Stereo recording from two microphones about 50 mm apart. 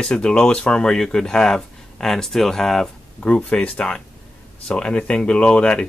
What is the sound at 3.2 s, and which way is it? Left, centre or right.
Speech, left.